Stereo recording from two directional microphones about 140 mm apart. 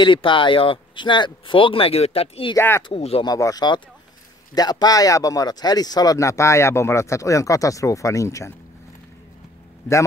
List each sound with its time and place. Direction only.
0.0 s speech: 35° left (ahead or behind)
2.5 s speech: 15° left (ahead or behind)
2.9 s speech: 45° left (ahead or behind)
3.3 s speech: 25° left (ahead or behind)